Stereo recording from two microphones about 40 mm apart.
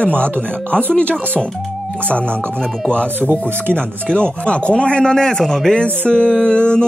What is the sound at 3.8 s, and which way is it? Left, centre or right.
Speech, left.